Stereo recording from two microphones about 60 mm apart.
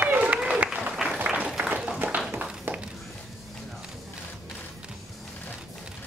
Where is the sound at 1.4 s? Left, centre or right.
Centre.